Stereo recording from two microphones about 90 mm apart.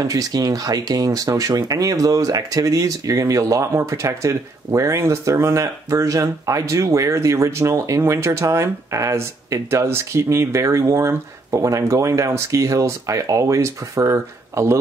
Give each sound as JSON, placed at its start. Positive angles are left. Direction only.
{"t": 0.1, "sound": "speech", "side_deg": -45}